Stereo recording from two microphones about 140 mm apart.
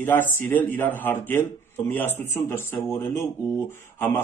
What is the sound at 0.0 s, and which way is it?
A man's voice, 15° left (ahead or behind).